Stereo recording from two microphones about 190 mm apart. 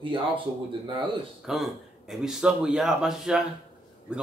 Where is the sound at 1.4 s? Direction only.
Centre (ahead or behind).